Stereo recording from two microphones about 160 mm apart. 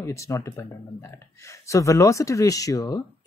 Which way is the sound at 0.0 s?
20° left (ahead or behind).